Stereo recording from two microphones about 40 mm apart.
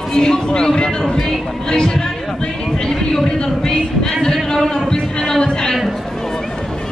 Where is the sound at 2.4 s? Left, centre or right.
Centre.